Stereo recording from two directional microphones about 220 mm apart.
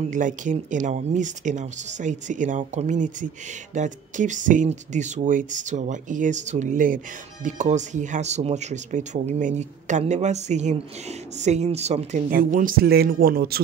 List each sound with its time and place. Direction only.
0.1 s speech: 35° right (ahead or behind)